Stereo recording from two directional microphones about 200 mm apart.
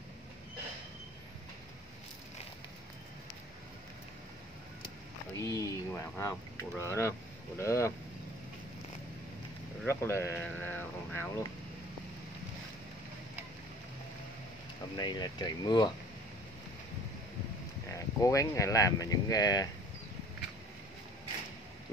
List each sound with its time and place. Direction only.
5.4 s a sound: 15° left (ahead or behind)
6.8 s speech: 15° left (ahead or behind)
9.8 s speech: 10° left (ahead or behind)
15.0 s speech: 20° left (ahead or behind)
17.9 s speech: 15° left (ahead or behind)